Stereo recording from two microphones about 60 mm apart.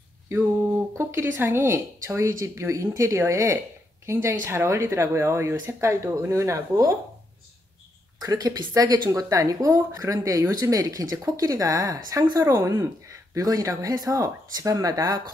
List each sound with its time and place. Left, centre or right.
0.3 s speech: right
8.2 s speech: right
12.5 s speech: right